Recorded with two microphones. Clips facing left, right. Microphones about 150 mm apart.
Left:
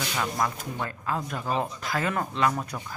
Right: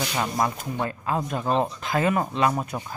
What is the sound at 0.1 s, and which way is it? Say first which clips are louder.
Speech: right 1 dB; 30° right (ahead or behind).